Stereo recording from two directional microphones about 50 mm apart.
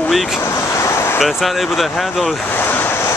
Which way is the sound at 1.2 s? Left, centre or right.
Centre.